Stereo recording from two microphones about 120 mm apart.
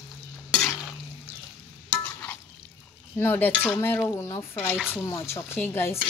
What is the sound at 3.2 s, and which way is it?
Chopping, 20° left (ahead or behind).